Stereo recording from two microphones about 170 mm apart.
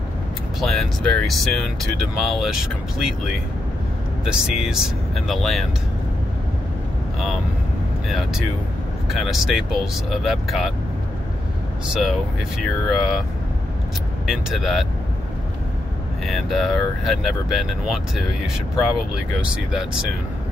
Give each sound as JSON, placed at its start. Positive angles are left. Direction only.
{"t": 0.6, "sound": "speech", "side_deg": 0}
{"t": 4.3, "sound": "speech", "side_deg": -5}
{"t": 8.1, "sound": "speech", "side_deg": 0}
{"t": 11.9, "sound": "speech", "side_deg": -5}
{"t": 14.2, "sound": "speech", "side_deg": 0}
{"t": 16.3, "sound": "speech", "side_deg": 0}